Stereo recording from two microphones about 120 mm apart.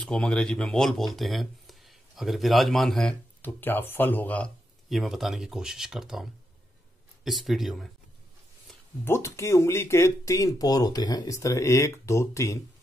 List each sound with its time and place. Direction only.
0.0 s speech: 10° left (ahead or behind)
3.4 s speech: 15° left (ahead or behind)
4.8 s speech: centre (ahead or behind)
7.2 s speech: centre (ahead or behind)
9.0 s speech: 20° left (ahead or behind)